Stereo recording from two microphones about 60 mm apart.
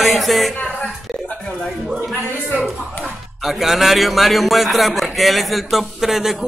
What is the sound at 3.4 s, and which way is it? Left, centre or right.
A man's voice, centre.